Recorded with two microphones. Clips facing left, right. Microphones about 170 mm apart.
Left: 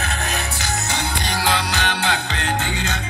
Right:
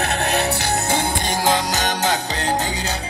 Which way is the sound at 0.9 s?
45° right (ahead or behind).